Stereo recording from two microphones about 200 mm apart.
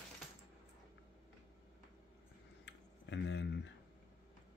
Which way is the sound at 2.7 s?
65° left (ahead or behind).